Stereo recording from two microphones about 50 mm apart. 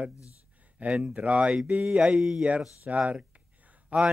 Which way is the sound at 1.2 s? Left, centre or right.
Right.